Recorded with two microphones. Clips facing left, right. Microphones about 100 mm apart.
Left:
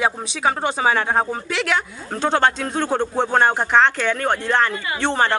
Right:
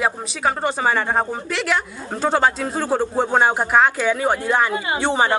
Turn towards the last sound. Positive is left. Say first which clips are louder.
# right 1 dB
turn(degrees=-10)  # may be behind; listen again after turning